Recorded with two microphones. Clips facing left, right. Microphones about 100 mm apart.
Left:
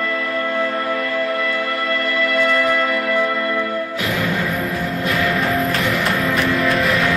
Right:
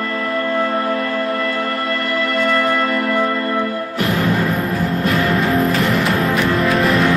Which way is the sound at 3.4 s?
35° right (ahead or behind).